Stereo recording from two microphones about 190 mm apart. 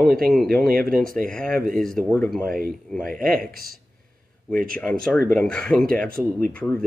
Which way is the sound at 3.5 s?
50° right (ahead or behind).